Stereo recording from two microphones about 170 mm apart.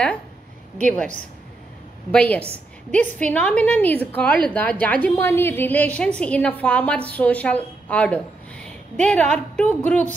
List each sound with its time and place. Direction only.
2.0 s a woman's voice: 5° left (ahead or behind)